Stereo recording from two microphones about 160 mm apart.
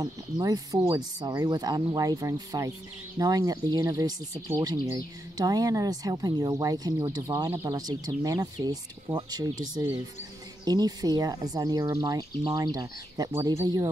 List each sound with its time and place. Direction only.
0.0 s speech: 25° right (ahead or behind)